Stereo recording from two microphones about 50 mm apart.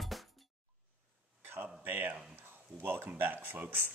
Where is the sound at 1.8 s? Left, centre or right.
Right.